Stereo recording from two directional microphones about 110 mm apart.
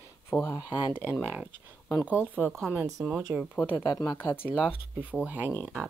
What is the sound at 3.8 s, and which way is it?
Speech, 40° left (ahead or behind).